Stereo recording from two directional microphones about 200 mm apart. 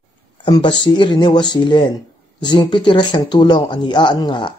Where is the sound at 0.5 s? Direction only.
20° left (ahead or behind).